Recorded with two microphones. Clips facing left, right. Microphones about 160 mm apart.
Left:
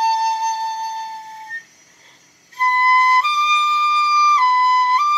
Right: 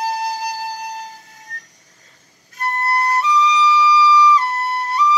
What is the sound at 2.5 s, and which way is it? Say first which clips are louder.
Flute: left 4 dB; 30° left (ahead or behind).